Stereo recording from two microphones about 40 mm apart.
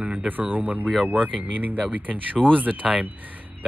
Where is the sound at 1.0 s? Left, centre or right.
Right.